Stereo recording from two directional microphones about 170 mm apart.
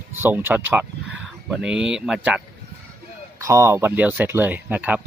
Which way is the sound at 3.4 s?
15° right (ahead or behind).